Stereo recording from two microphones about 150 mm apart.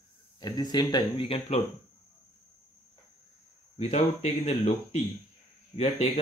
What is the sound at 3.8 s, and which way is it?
Speech, 45° left (ahead or behind).